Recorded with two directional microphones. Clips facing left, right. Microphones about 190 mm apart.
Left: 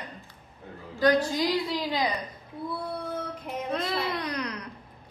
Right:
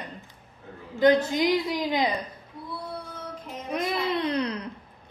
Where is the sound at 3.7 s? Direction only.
15° right (ahead or behind).